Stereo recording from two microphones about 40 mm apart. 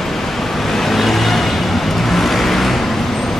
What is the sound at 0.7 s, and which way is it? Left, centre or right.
Vehicle, centre.